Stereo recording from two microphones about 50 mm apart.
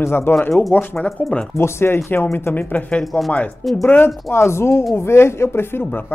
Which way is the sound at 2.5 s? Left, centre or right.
Left.